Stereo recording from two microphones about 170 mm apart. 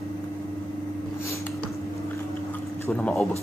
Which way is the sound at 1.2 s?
15° left (ahead or behind).